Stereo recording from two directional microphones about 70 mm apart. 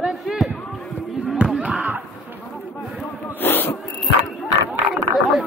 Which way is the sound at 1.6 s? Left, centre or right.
Centre.